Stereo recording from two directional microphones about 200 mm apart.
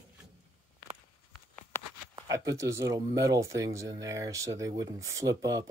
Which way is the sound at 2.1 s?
20° right (ahead or behind).